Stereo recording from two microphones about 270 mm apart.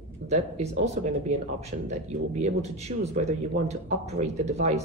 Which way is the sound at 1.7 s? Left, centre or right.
Right.